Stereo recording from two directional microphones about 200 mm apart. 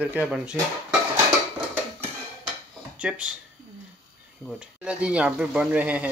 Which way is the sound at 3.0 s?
5° right (ahead or behind).